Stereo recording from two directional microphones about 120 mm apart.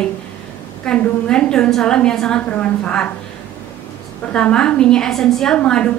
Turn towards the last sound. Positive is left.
turn(degrees=10)  # may be behind; listen again after turning